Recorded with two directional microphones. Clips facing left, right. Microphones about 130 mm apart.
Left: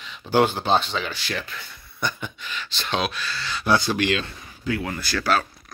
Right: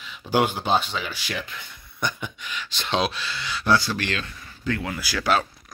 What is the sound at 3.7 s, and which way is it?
Speech, 20° left (ahead or behind).